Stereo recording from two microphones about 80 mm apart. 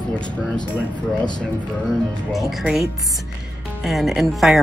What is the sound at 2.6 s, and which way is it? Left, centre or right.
Speech, centre.